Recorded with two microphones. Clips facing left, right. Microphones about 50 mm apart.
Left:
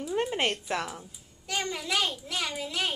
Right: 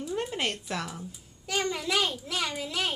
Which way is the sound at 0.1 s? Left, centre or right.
Left.